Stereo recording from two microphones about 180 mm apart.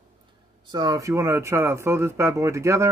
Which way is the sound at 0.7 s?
20° right (ahead or behind).